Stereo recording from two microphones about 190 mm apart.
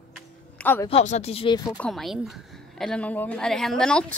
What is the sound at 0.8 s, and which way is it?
Speech, 35° left (ahead or behind).